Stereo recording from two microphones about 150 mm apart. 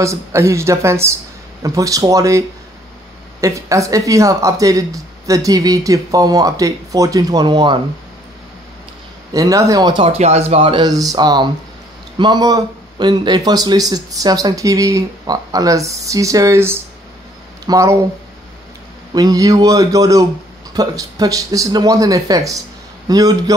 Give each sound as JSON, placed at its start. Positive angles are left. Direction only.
{"t": 0.0, "sound": "speech", "side_deg": -20}
{"t": 9.3, "sound": "speech", "side_deg": -25}
{"t": 10.1, "sound": "speech", "side_deg": -45}
{"t": 19.1, "sound": "speech", "side_deg": -25}